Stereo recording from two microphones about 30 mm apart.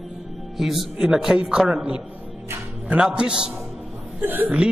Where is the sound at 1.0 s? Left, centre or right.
Centre.